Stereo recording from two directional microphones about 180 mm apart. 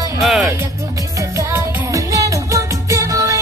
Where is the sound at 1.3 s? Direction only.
15° right (ahead or behind).